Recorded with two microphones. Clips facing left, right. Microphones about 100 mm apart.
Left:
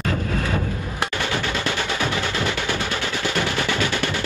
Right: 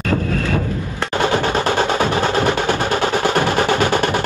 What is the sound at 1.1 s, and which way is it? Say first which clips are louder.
Music: right 11 dB; 50° right (ahead or behind).